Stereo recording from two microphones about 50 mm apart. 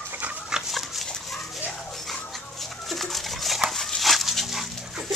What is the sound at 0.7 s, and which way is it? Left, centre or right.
Dog, centre.